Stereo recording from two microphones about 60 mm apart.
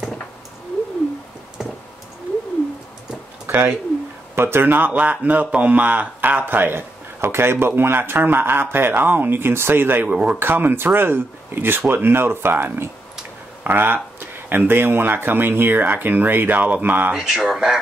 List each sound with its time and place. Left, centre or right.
3.4 s a sound: right
4.4 s a man's voice: right
10.0 s a man's voice: centre
10.4 s speech: right
17.1 s speech: centre